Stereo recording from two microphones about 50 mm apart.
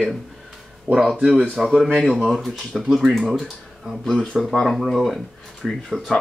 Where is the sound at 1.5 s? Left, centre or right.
Centre.